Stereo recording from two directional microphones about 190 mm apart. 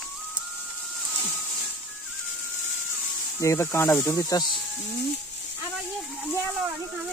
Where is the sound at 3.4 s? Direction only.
15° left (ahead or behind).